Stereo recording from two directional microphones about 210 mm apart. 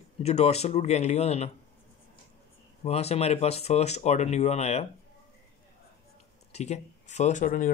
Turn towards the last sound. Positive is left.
turn(degrees=40)  # may be behind; listen again after turning